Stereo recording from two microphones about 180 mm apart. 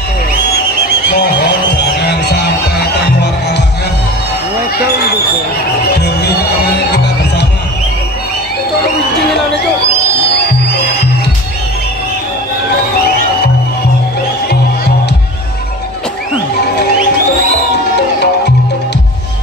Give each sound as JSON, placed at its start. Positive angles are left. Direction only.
{"t": 1.8, "sound": "music", "side_deg": 65}
{"t": 5.9, "sound": "music", "side_deg": 65}
{"t": 17.9, "sound": "music", "side_deg": 70}